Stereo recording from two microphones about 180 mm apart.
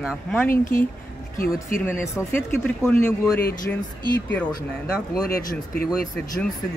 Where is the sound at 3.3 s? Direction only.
55° left (ahead or behind).